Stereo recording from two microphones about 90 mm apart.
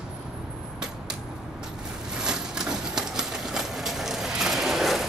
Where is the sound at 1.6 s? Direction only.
10° right (ahead or behind).